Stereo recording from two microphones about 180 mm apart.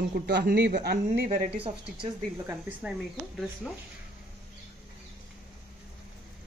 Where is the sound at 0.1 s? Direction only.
65° right (ahead or behind).